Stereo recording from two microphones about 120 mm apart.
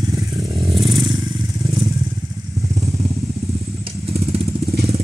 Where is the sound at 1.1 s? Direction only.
40° right (ahead or behind).